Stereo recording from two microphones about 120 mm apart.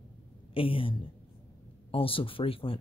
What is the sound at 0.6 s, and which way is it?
Speech, 50° left (ahead or behind).